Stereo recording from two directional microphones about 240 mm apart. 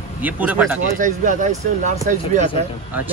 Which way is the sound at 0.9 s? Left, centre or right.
Right.